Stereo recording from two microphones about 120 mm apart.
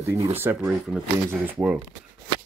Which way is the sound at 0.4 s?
15° right (ahead or behind).